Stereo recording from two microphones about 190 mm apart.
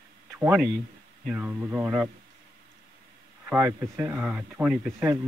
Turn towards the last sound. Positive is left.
turn(degrees=-5)  # may be behind; listen again after turning